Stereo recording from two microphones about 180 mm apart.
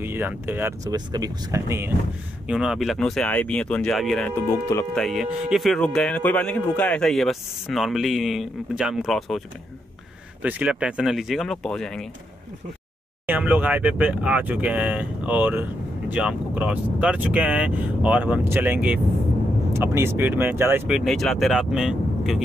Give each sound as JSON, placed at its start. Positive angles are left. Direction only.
{"t": 0.0, "sound": "speech", "side_deg": -10}
{"t": 2.4, "sound": "speech", "side_deg": -5}
{"t": 4.5, "sound": "speech", "side_deg": 15}
{"t": 4.9, "sound": "speech", "side_deg": 0}
{"t": 10.4, "sound": "speech", "side_deg": -5}
{"t": 13.3, "sound": "speech", "side_deg": -10}
{"t": 21.0, "sound": "speech", "side_deg": 0}